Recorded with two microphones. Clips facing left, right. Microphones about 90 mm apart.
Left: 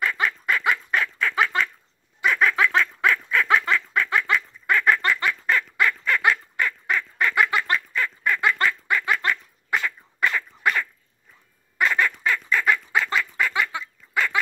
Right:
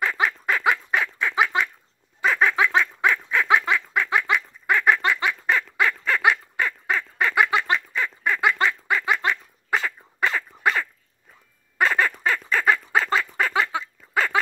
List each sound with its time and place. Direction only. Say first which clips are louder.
0.0 s duck: right 1 dB; 25° right (ahead or behind)
2.2 s fowl: even; 25° right (ahead or behind)
5.8 s duck: even; 25° right (ahead or behind)
9.7 s dog: right 1 dB; 30° right (ahead or behind)
11.8 s fowl: right 1 dB; 35° right (ahead or behind)